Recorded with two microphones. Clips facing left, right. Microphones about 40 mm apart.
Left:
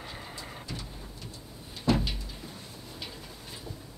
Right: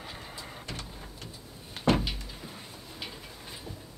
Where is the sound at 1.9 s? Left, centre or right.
Right.